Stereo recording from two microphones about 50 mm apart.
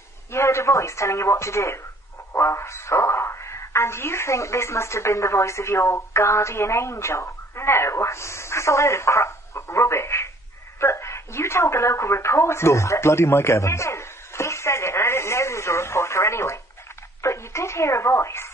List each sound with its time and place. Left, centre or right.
0.3 s a woman's voice: left